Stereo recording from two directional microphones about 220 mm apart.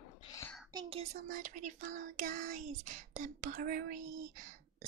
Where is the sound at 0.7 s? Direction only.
25° right (ahead or behind).